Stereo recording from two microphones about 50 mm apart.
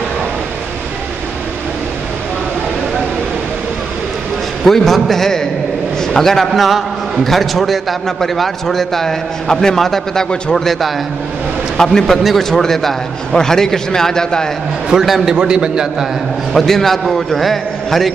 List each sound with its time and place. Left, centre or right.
4.6 s a man's voice: centre
15.0 s a man's voice: centre
15.3 s a man's voice: centre
16.5 s a man's voice: centre